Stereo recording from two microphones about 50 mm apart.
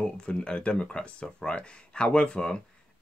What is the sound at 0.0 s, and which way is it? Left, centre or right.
Speech, centre.